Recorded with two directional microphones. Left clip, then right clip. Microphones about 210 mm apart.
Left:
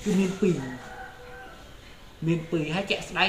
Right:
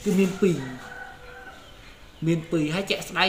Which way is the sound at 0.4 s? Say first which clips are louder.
Right 2 dB; 35° right (ahead or behind).